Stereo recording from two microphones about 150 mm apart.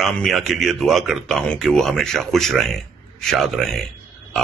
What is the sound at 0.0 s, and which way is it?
Speech, centre (ahead or behind).